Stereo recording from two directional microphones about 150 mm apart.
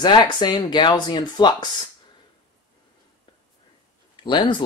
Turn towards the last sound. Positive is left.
turn(degrees=30)  # may be behind; listen again after turning